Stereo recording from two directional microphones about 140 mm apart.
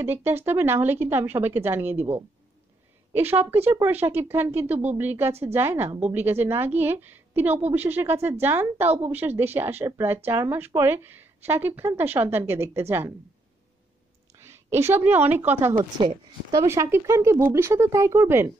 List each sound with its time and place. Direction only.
0.0 s speech: 15° right (ahead or behind)
14.4 s a woman's voice: 20° right (ahead or behind)
16.0 s speech: 35° right (ahead or behind)
16.5 s speech: 20° right (ahead or behind)